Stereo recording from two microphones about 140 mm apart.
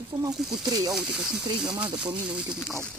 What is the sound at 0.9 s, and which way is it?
Speech, 5° right (ahead or behind).